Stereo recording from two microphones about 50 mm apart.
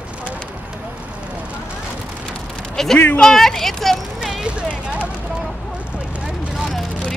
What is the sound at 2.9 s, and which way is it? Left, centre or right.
Speech, left.